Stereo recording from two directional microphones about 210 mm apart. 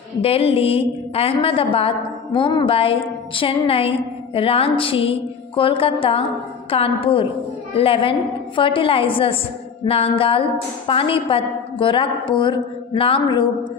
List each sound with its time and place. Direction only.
0.2 s a woman's voice: 30° left (ahead or behind)